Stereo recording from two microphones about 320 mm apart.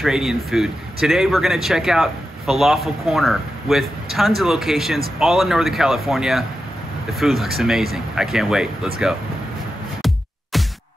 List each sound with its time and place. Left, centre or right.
0.0 s speech: centre
10.5 s music: centre